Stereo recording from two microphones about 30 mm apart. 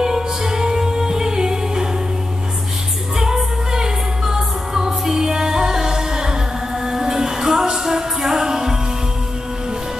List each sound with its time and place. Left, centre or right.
0.0 s music: centre
3.7 s music: centre